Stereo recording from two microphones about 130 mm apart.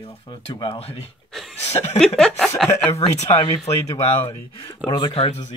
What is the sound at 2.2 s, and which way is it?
Speech, 5° left (ahead or behind).